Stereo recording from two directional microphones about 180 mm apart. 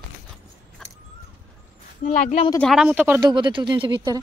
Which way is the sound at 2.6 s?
Centre (ahead or behind).